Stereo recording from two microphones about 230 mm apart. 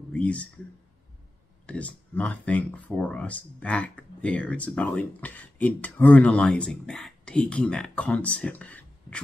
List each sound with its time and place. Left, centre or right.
0.1 s speech: centre
1.7 s speech: centre